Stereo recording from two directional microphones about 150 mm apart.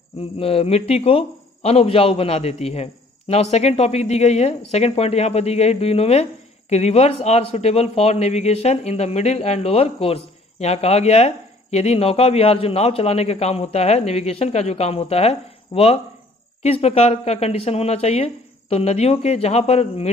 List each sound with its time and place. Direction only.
0.2 s a man's voice: 40° left (ahead or behind)